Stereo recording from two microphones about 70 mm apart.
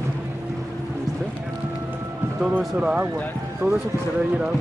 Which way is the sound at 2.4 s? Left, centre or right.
Centre.